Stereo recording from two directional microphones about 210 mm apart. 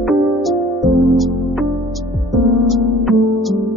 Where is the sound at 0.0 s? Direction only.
Centre (ahead or behind).